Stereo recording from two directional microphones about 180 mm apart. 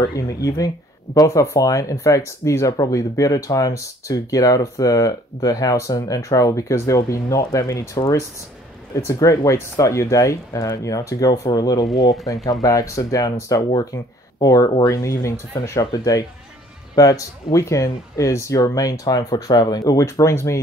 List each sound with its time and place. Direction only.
0.0 s speech: 20° left (ahead or behind)
11.8 s speech: centre (ahead or behind)
12.6 s speech: 20° left (ahead or behind)